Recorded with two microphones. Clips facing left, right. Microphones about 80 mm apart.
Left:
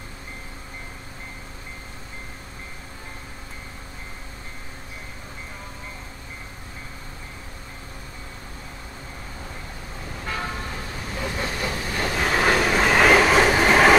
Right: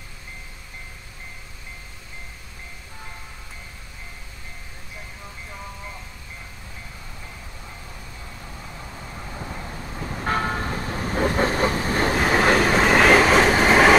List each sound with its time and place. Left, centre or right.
10.2 s vehicle: right
12.2 s train: centre